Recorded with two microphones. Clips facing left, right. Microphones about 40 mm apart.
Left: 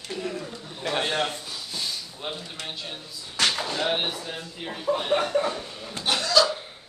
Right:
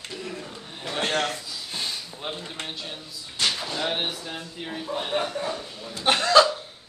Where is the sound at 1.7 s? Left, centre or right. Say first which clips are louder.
Right 1 dB; right.